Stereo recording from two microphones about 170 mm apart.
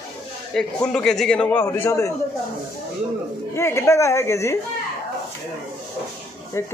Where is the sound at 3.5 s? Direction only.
15° left (ahead or behind).